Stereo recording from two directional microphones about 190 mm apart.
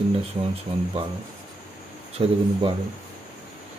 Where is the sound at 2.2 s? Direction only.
30° right (ahead or behind).